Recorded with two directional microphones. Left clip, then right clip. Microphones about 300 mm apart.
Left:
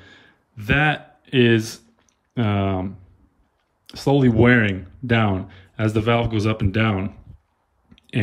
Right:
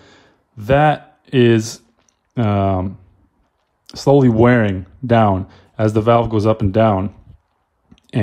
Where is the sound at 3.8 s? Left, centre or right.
Centre.